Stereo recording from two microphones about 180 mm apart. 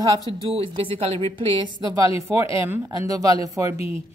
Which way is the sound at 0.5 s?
30° right (ahead or behind).